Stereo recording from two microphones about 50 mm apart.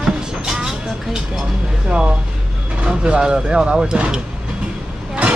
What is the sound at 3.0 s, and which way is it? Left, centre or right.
Speech, centre.